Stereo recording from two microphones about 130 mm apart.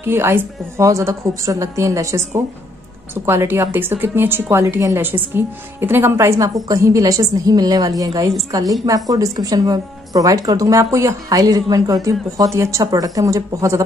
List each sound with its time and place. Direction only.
0.0 s a woman's voice: 20° right (ahead or behind)